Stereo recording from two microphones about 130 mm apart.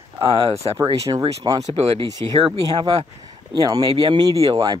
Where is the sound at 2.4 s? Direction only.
40° right (ahead or behind).